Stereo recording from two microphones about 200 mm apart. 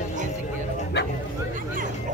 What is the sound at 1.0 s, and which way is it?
Bow-wow, 55° left (ahead or behind).